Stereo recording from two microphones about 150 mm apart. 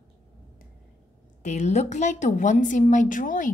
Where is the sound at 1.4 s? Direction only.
50° left (ahead or behind).